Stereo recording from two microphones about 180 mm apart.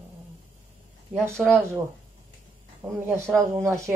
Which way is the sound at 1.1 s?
10° right (ahead or behind).